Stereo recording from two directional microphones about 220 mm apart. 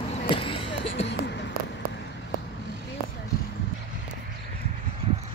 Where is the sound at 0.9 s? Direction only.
50° left (ahead or behind).